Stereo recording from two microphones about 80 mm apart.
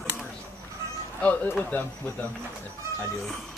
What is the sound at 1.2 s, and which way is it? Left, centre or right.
Speech, left.